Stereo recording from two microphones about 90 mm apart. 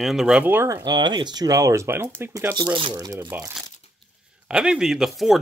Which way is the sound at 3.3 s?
20° right (ahead or behind).